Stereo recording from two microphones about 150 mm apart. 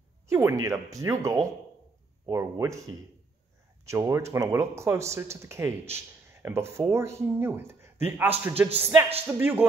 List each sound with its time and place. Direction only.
0.3 s speech: 20° right (ahead or behind)
3.8 s speech: 20° right (ahead or behind)